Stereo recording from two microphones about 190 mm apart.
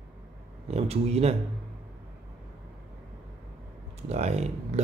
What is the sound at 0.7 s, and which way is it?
Speech, 35° right (ahead or behind).